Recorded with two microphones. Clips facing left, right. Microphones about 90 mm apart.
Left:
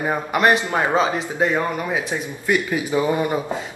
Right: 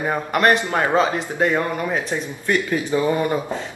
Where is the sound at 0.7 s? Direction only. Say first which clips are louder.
Right 1 dB; 15° left (ahead or behind).